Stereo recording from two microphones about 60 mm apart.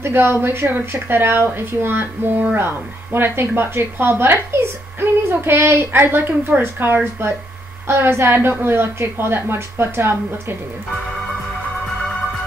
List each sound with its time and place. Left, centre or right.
0.0 s a woman's voice: right